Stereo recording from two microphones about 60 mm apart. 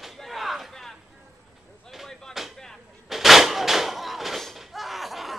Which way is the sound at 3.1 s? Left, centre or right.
Centre.